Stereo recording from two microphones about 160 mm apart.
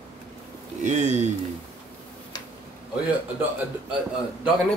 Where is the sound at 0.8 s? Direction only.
45° right (ahead or behind).